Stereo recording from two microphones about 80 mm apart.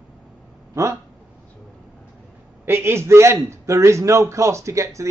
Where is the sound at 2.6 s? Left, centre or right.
Right.